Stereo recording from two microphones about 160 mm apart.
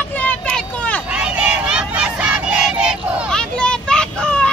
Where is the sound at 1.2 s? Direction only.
5° right (ahead or behind).